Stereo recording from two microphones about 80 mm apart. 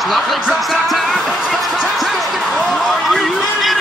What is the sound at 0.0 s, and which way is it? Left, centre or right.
Music, centre.